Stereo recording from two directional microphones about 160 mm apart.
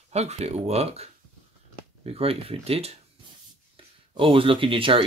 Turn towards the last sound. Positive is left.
turn(degrees=-35)  # may be behind; listen again after turning